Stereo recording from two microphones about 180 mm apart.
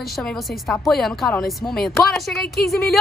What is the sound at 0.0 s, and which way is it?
A woman's voice, centre (ahead or behind).